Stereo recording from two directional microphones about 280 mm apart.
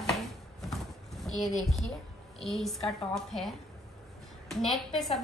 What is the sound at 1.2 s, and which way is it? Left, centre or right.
A woman's voice, centre.